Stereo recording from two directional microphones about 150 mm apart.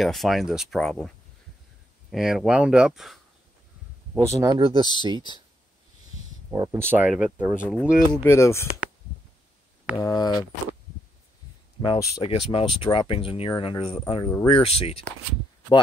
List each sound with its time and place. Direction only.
0.0 s speech: centre (ahead or behind)
4.2 s speech: 20° right (ahead or behind)
4.6 s speech: 35° right (ahead or behind)
6.5 s speech: 20° right (ahead or behind)
7.1 s speech: 5° right (ahead or behind)
8.3 s speech: 20° left (ahead or behind)
9.9 s speech: 25° left (ahead or behind)
11.8 s speech: 25° left (ahead or behind)
12.2 s speech: 40° left (ahead or behind)